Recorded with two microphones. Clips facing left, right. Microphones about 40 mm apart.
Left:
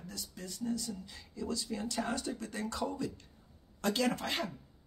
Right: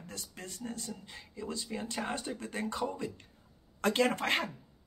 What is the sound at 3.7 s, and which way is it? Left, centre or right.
Speech, right.